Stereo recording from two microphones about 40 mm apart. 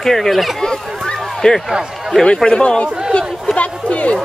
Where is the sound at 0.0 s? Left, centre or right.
Centre.